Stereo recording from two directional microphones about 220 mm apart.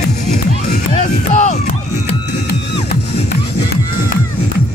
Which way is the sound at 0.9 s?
30° left (ahead or behind).